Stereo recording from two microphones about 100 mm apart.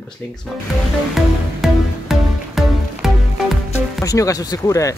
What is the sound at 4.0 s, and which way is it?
Speech, 35° left (ahead or behind).